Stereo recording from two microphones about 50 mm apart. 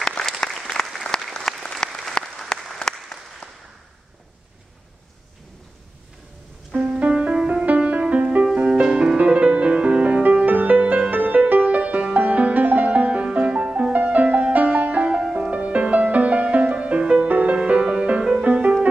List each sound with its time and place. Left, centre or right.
0.0 s applause: centre
1.1 s applause: centre
3.4 s a sound: left
6.8 s music: right
17.6 s music: right
18.5 s music: right